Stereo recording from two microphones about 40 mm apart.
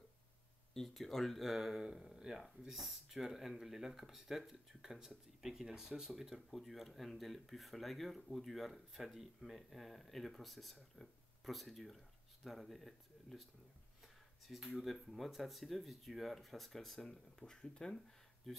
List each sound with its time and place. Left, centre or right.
0.7 s speech: centre
1.6 s speech: centre
14.8 s speech: centre
17.1 s speech: centre
18.4 s speech: centre